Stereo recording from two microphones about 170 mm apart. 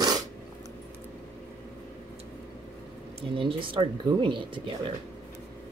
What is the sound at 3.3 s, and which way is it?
Speech, 30° right (ahead or behind).